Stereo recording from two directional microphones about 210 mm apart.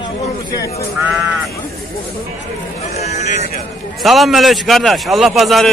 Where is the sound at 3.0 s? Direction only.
30° left (ahead or behind).